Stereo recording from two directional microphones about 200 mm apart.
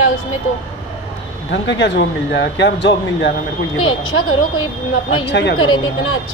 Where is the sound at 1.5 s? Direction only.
60° left (ahead or behind); by 4.2 s 90° left.